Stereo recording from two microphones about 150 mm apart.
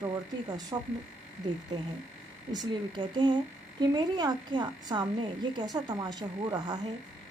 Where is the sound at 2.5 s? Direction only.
30° right (ahead or behind).